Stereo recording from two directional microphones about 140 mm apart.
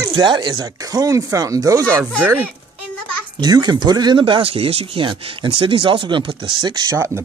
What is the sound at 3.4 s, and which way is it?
Speech, 30° right (ahead or behind).